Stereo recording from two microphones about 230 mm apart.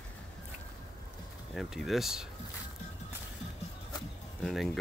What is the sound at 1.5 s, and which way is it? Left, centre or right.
Speech, centre.